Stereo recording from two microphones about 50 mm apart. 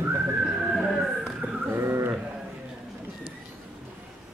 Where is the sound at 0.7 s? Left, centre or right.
Centre.